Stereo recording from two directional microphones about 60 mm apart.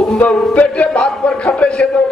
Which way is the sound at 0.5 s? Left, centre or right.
Left.